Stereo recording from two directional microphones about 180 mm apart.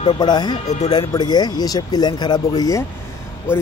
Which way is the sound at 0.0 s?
25° left (ahead or behind).